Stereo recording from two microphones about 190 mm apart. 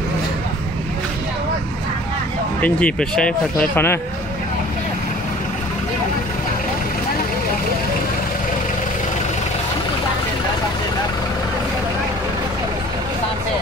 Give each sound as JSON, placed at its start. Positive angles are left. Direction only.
{"t": 2.6, "sound": "speech", "side_deg": 5}